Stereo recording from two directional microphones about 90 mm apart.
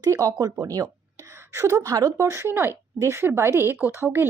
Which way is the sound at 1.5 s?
30° right (ahead or behind).